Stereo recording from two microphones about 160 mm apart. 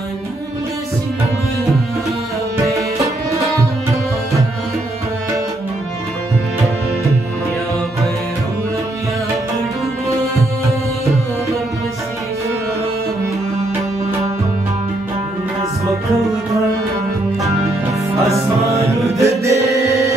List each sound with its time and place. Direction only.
2.6 s music: 20° right (ahead or behind)
18.3 s music: 20° right (ahead or behind)